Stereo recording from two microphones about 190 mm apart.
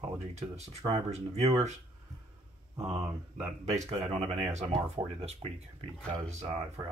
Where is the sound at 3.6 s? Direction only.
30° right (ahead or behind).